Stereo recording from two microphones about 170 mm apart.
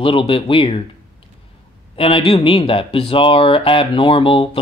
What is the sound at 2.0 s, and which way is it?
Speech, 30° left (ahead or behind).